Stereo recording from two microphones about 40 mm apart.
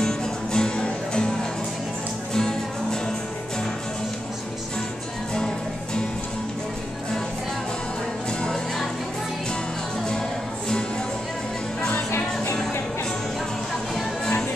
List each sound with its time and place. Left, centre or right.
0.0 s music: centre
2.3 s music: centre